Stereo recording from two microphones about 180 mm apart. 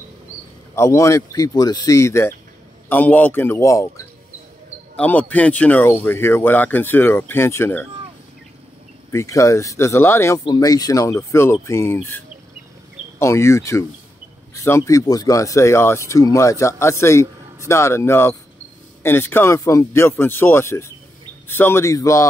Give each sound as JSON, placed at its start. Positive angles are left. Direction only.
{"t": 0.7, "sound": "speech", "side_deg": 15}
{"t": 4.9, "sound": "speech", "side_deg": 10}
{"t": 9.1, "sound": "speech", "side_deg": 15}
{"t": 13.2, "sound": "speech", "side_deg": 15}